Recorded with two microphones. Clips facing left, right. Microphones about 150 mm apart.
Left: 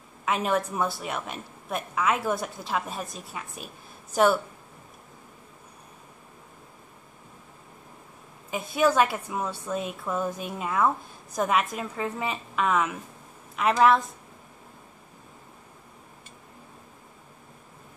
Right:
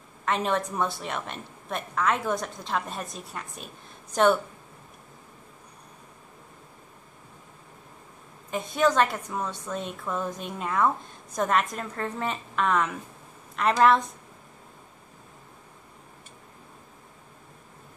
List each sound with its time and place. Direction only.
0.2 s a woman's voice: 5° left (ahead or behind)
8.5 s a woman's voice: 5° left (ahead or behind)